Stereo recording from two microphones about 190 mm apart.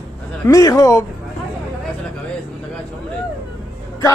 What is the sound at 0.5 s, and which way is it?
Speech, 20° left (ahead or behind).